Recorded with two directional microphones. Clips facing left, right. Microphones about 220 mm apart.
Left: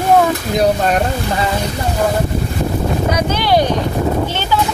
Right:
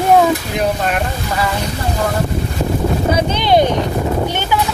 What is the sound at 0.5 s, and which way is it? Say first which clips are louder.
Speech: left 4 dB; 35° left (ahead or behind).